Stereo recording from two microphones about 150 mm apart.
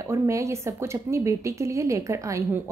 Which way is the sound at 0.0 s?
20° right (ahead or behind).